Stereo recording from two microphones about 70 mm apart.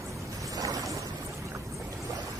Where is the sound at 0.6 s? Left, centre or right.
Right.